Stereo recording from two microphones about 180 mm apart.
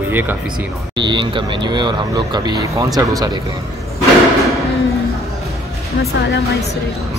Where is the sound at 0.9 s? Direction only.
25° right (ahead or behind).